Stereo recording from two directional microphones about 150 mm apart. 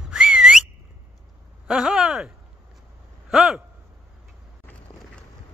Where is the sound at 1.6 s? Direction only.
5° right (ahead or behind).